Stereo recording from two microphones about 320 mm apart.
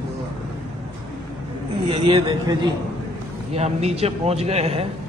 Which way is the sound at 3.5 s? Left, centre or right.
Centre.